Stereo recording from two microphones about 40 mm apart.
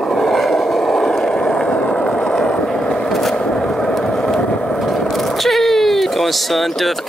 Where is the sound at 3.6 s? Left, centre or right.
Left.